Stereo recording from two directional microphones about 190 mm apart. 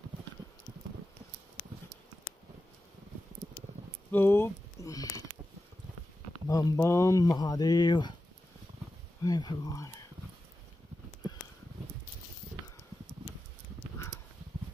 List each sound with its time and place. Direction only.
4.1 s a sound: 10° left (ahead or behind)
6.5 s speech: 15° left (ahead or behind)
9.2 s speech: 20° left (ahead or behind)
13.9 s dog: 15° left (ahead or behind)